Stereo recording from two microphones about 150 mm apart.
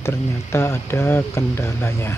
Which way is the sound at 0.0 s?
15° left (ahead or behind).